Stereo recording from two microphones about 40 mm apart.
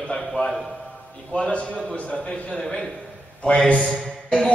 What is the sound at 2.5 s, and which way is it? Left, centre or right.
A man's voice, centre.